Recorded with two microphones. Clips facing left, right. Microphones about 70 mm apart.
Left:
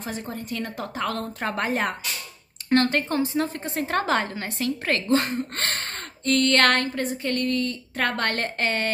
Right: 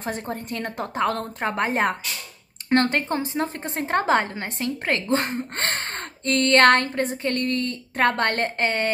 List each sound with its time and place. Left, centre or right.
0.3 s a woman's voice: right